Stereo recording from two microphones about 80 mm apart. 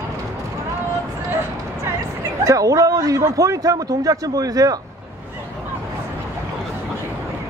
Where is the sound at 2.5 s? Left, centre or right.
Right.